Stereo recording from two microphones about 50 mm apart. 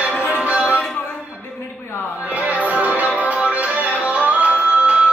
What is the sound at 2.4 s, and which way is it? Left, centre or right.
Music, right.